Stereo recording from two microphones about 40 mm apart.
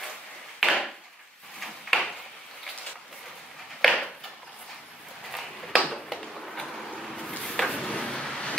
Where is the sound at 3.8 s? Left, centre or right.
Centre.